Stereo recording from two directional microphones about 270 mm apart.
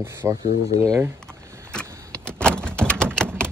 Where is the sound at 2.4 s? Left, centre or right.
Centre.